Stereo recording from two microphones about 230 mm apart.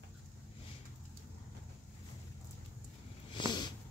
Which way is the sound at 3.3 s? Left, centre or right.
Centre.